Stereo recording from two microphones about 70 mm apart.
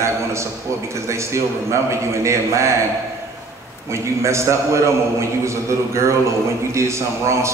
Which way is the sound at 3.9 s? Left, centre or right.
Right.